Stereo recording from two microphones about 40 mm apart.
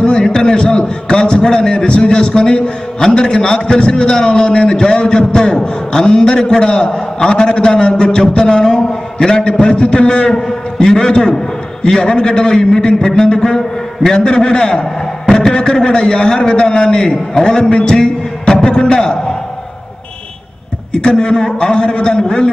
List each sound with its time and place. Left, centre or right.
0.0 s a man's voice: centre
21.0 s a man's voice: left